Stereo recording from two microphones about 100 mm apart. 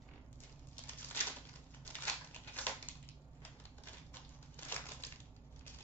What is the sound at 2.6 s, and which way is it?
Crushing, 20° left (ahead or behind).